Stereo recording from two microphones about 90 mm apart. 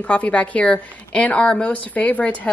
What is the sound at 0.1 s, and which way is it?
A woman's voice, 15° left (ahead or behind).